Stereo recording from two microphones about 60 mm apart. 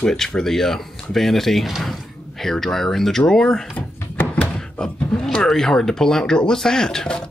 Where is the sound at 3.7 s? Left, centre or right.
Left.